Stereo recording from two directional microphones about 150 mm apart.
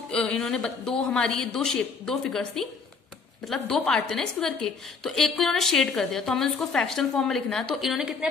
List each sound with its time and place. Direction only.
0.1 s a woman's voice: 5° left (ahead or behind)